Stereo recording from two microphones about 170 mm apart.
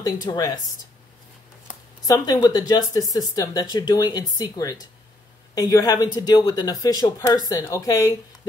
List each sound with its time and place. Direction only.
0.0 s speech: 20° left (ahead or behind)
2.0 s speech: 20° left (ahead or behind)